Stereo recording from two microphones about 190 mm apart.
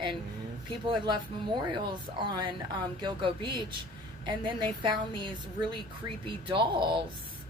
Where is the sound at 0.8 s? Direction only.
25° right (ahead or behind).